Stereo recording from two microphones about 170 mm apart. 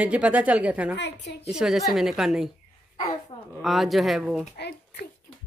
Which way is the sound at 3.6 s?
Centre (ahead or behind).